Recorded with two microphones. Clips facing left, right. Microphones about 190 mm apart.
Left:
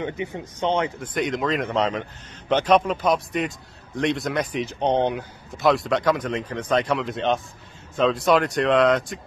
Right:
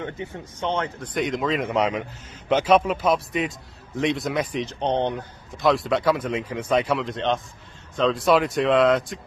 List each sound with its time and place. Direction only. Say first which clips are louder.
0.0 s speech: left 3 dB; 15° left (ahead or behind)
1.1 s speech: right 1 dB; centre (ahead or behind)